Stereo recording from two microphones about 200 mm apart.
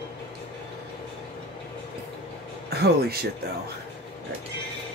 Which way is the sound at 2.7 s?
50° right (ahead or behind).